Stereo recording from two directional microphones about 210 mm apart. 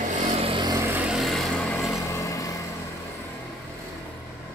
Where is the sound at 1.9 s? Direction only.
15° left (ahead or behind).